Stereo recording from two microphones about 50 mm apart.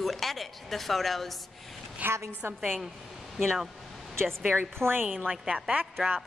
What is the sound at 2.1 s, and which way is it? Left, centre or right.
Speech, right.